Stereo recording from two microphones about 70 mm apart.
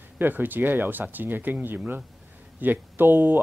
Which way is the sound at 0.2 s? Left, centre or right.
Right.